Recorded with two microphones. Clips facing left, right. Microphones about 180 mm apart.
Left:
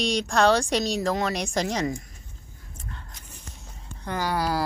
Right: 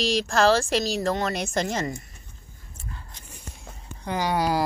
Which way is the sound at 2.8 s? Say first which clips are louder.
Right 1 dB; 5° right (ahead or behind).